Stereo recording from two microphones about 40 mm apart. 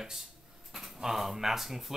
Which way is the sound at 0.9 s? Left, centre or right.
Centre.